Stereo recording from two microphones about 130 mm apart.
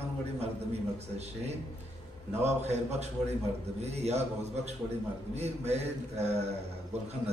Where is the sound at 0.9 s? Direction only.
55° right (ahead or behind).